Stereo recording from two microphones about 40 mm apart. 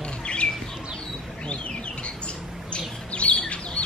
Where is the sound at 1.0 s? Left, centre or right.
Left.